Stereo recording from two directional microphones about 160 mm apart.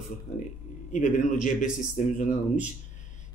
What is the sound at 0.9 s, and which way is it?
Speech, 55° left (ahead or behind).